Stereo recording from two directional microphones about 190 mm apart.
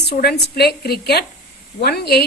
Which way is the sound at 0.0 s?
60° left (ahead or behind).